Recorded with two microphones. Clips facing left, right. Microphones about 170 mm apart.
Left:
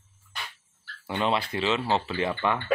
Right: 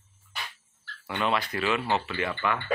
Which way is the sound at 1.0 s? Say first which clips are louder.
Left 1 dB; 30° left (ahead or behind).